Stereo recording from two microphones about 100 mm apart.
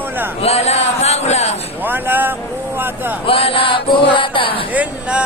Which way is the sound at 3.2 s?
65° left (ahead or behind).